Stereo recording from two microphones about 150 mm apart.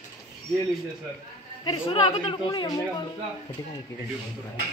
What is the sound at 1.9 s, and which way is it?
Speech, 35° left (ahead or behind).